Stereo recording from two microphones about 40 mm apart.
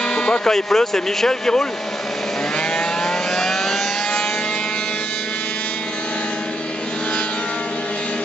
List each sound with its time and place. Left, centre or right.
0.1 s music: left
0.5 s a man's voice: centre
3.3 s vehicle: centre